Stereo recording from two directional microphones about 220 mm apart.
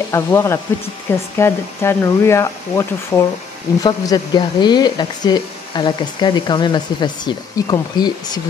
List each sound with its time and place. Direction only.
0.1 s speech: 15° left (ahead or behind)